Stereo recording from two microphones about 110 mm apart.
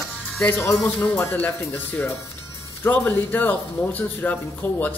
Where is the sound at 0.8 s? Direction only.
15° left (ahead or behind).